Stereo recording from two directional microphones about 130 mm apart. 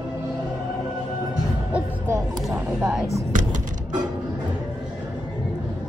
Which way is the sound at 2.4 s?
5° right (ahead or behind).